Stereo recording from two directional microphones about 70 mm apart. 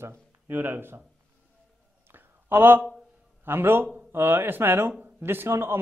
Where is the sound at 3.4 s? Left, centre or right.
Right.